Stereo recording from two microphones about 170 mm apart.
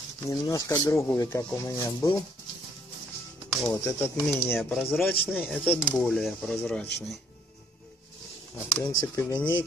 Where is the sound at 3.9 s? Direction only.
15° left (ahead or behind).